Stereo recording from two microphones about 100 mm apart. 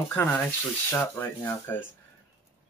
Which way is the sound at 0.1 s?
20° left (ahead or behind).